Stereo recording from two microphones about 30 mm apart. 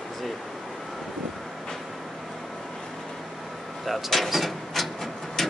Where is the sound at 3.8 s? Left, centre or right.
Centre.